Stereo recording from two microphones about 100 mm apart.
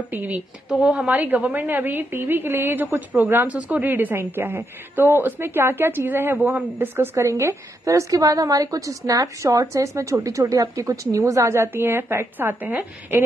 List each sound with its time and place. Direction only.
0.1 s a woman's voice: 15° right (ahead or behind)